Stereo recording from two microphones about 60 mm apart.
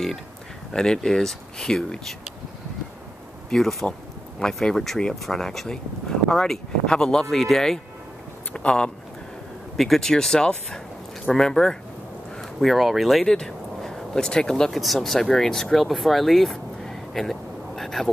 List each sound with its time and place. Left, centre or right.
0.7 s speech: centre
3.4 s speech: centre
9.8 s speech: centre